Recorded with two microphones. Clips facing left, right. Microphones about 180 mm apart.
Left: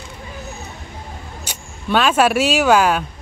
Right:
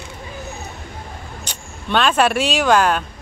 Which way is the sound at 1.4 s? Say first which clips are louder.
Left 1 dB; 10° left (ahead or behind).